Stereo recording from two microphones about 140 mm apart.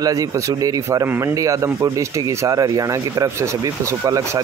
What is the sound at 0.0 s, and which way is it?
Speech, 25° right (ahead or behind).